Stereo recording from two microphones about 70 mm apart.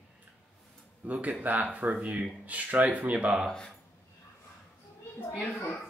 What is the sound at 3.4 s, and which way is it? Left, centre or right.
Speech, centre.